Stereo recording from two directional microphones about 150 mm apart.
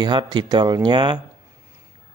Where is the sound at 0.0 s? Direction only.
30° right (ahead or behind).